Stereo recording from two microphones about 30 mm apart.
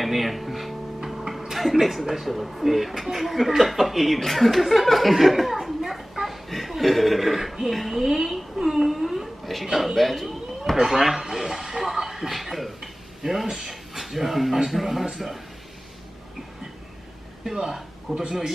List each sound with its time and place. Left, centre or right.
0.0 s speech: centre
1.0 s music: centre
1.5 s speech: centre
6.2 s a sound: centre
7.7 s a woman's voice: centre
8.6 s wail: centre
9.9 s speech: centre
10.8 s a sound: centre
13.6 s speech: centre
18.1 s speech: right